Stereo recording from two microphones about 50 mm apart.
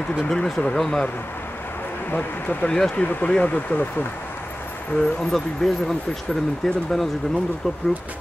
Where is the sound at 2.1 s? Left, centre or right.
Left.